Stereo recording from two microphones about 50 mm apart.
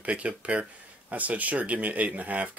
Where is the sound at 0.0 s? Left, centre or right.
Right.